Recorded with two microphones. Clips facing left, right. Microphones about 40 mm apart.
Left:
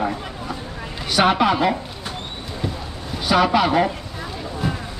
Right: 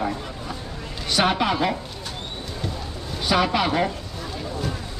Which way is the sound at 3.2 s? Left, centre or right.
Centre.